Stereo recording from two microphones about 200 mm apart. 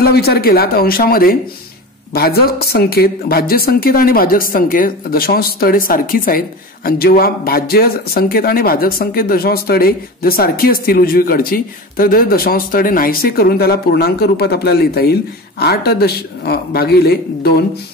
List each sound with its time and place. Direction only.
0.0 s speech: 50° left (ahead or behind)